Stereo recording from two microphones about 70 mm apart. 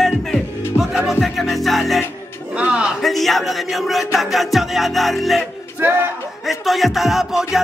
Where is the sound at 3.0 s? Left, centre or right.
Centre.